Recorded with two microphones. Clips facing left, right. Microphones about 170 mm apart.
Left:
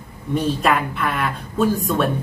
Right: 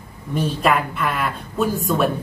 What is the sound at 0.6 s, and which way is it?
A woman's voice, centre (ahead or behind).